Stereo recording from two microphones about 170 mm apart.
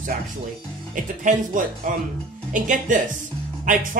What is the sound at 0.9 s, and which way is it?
Speech, 50° right (ahead or behind).